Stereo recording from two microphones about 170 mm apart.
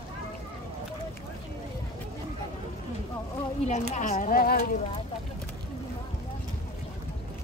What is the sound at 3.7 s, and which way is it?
Speech, 45° left (ahead or behind).